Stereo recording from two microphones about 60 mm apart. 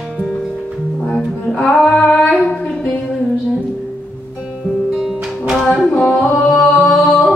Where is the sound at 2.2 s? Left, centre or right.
Centre.